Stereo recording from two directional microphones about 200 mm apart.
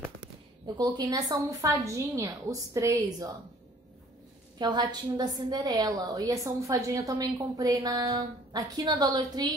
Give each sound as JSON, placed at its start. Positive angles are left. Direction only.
{"t": 0.7, "sound": "a woman's voice", "side_deg": -20}
{"t": 4.6, "sound": "a woman's voice", "side_deg": -20}